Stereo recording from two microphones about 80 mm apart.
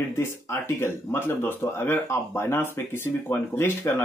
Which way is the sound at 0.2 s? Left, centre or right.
Left.